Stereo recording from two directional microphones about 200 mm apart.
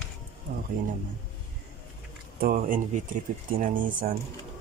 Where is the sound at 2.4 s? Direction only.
45° right (ahead or behind).